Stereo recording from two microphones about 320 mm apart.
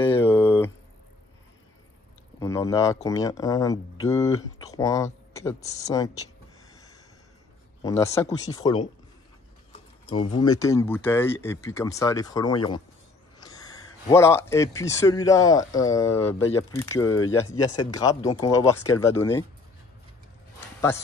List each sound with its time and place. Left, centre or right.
0.0 s a sound: centre
2.4 s speech: centre
6.7 s snort: centre
7.8 s speech: centre
9.7 s a sound: centre
10.4 s speech: centre